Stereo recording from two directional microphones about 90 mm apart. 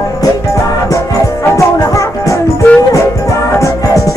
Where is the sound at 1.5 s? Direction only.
35° left (ahead or behind).